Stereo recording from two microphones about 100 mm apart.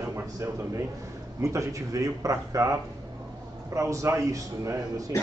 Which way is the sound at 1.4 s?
30° right (ahead or behind).